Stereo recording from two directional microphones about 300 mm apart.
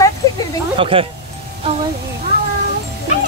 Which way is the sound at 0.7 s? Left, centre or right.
Centre.